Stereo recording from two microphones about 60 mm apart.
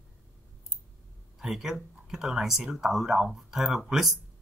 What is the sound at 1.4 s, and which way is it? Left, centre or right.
Speech, centre.